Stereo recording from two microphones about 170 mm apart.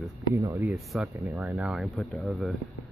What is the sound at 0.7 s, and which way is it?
Speech, centre (ahead or behind).